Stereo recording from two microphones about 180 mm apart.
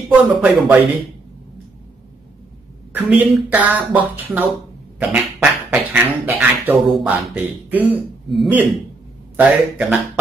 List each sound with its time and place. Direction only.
0.1 s speech: 5° right (ahead or behind)
2.9 s speech: 10° right (ahead or behind)
4.9 s a sound: 5° right (ahead or behind)
6.2 s speech: 10° right (ahead or behind)